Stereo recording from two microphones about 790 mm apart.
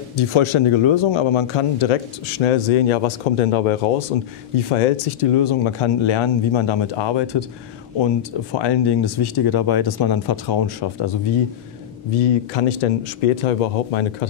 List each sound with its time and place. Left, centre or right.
0.2 s speech: left
4.7 s speech: left
12.5 s speech: left